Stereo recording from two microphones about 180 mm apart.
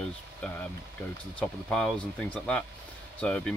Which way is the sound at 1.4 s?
5° left (ahead or behind).